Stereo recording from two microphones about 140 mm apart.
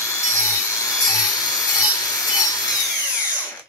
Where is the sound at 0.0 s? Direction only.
20° left (ahead or behind).